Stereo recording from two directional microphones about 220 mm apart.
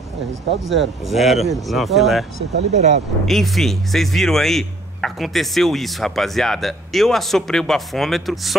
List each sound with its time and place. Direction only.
0.7 s speech: centre (ahead or behind)
2.7 s speech: 30° right (ahead or behind)
3.3 s speech: centre (ahead or behind)